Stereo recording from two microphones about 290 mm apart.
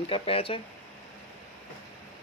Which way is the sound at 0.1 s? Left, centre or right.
Centre.